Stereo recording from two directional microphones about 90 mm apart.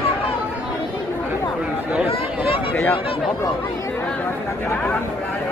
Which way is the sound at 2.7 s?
20° left (ahead or behind).